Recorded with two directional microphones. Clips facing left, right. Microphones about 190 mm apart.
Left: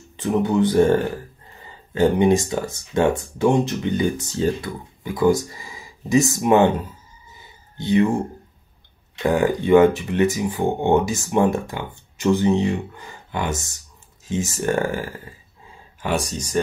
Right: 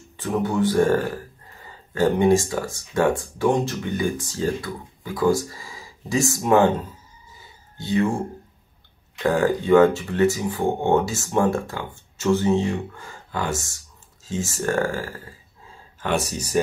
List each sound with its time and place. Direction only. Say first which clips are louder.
0.2 s speech: left 3 dB; 20° left (ahead or behind)
7.7 s speech: left 4 dB; 20° left (ahead or behind)
9.2 s speech: left 1 dB; 15° left (ahead or behind)
16.2 s speech: right 1 dB; 5° right (ahead or behind)